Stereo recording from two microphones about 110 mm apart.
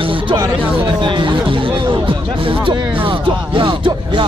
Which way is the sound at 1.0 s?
45° right (ahead or behind).